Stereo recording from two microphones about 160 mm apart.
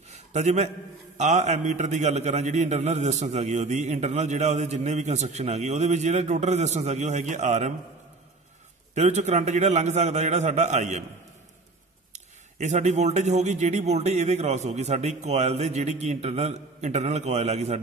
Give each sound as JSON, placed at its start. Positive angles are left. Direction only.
{"t": 0.1, "sound": "a sound", "side_deg": -45}
{"t": 1.1, "sound": "a man's voice", "side_deg": -45}
{"t": 8.9, "sound": "a man's voice", "side_deg": -45}
{"t": 12.1, "sound": "a man's voice", "side_deg": -45}